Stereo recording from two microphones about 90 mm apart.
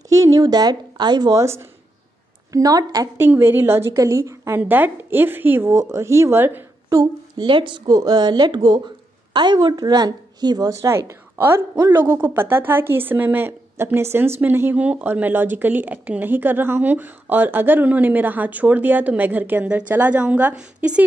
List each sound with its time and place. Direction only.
0.1 s a woman's voice: 40° right (ahead or behind)
1.3 s a woman's voice: 30° right (ahead or behind)
2.5 s a woman's voice: 45° right (ahead or behind)
3.2 s a woman's voice: 25° right (ahead or behind)
4.6 s a woman's voice: 20° right (ahead or behind)
6.9 s a woman's voice: 35° right (ahead or behind)
7.3 s speech: 60° right (ahead or behind)
7.9 s a woman's voice: 45° right (ahead or behind)
10.8 s a woman's voice: 30° right (ahead or behind); by 21.0 s 10° right (ahead or behind)